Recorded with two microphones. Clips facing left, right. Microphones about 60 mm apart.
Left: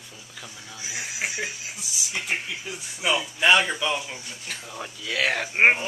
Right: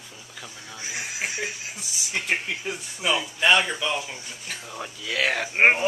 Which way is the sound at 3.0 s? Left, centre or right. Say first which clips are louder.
Left 1 dB; centre.